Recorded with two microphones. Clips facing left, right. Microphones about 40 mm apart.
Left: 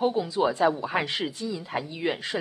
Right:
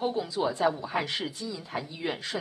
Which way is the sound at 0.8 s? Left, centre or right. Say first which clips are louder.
Left 3 dB; left.